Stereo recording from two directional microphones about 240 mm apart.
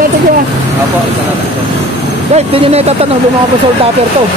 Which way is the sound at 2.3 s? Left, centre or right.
Right.